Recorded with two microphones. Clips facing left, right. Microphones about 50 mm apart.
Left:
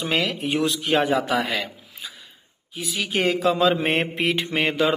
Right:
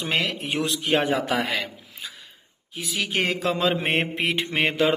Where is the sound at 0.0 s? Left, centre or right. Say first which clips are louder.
Left 2 dB; right.